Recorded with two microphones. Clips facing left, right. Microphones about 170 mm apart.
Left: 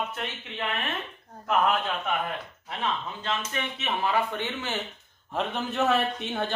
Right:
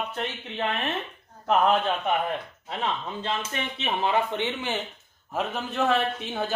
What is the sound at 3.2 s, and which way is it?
Speech, 30° right (ahead or behind).